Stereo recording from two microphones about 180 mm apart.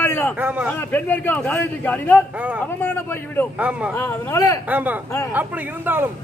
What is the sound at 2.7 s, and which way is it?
Speech, 10° left (ahead or behind).